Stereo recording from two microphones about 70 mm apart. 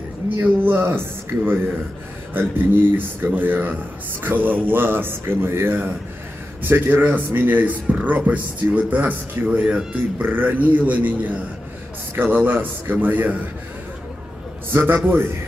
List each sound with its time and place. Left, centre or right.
0.4 s speech: right
14.7 s speech: right